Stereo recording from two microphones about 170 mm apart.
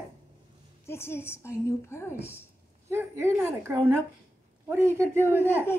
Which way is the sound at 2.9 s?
15° right (ahead or behind).